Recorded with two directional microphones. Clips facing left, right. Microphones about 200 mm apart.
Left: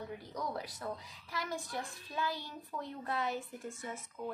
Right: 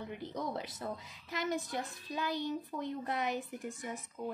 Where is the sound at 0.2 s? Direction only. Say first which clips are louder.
Right 5 dB; 25° right (ahead or behind).